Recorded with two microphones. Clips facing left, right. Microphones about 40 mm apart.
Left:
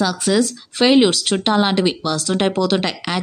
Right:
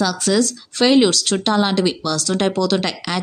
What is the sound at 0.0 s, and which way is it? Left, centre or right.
Speech, centre.